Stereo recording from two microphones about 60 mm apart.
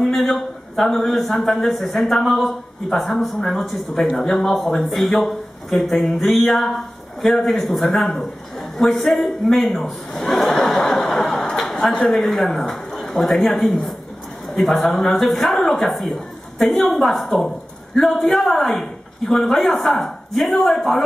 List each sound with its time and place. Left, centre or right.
0.0 s a man's voice: centre